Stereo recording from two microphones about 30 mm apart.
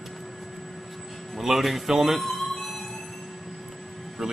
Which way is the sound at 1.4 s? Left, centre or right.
Centre.